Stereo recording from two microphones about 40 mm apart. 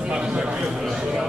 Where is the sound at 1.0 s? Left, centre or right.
Centre.